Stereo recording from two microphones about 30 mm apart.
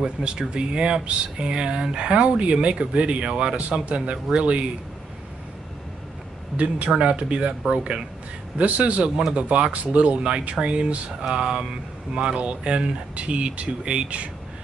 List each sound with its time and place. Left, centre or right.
0.0 s speech: right
6.5 s speech: right
8.5 s speech: right
10.1 s speech: right
12.4 s speech: right